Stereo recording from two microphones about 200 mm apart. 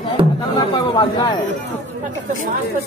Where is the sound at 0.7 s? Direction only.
25° left (ahead or behind).